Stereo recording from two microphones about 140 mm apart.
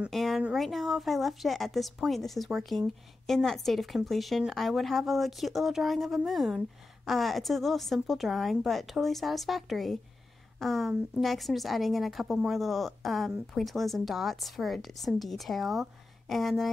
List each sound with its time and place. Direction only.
0.1 s speech: centre (ahead or behind)